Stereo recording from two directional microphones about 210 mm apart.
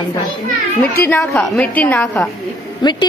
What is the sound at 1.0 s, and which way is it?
A woman's voice, 10° left (ahead or behind).